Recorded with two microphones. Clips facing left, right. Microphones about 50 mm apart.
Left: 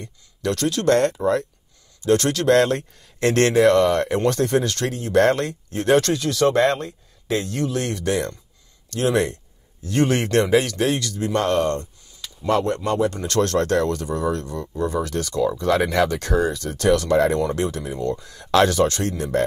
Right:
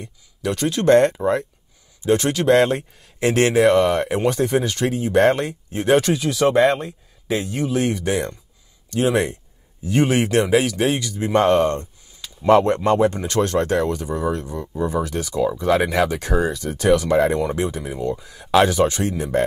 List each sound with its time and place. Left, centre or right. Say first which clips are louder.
0.0 s speech: even; centre